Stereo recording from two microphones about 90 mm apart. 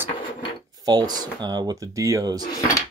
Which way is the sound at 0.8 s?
50° right (ahead or behind).